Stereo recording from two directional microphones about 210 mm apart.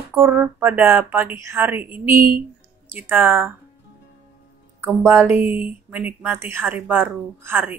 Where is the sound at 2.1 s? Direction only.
45° right (ahead or behind).